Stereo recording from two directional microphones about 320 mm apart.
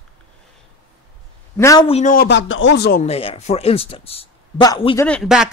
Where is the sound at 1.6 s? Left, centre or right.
Centre.